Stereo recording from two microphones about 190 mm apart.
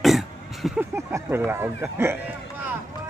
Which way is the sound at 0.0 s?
Centre (ahead or behind).